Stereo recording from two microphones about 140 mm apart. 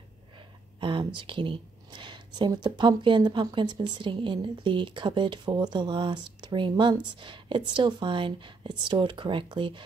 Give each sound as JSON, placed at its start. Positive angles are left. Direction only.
{"t": 0.7, "sound": "a woman's voice", "side_deg": -35}